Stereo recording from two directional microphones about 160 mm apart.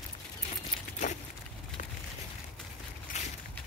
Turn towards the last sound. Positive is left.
turn(degrees=55)  # may be behind; listen again after turning